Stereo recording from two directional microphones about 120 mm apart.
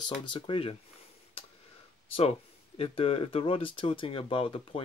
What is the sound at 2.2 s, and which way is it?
Speech, 55° left (ahead or behind).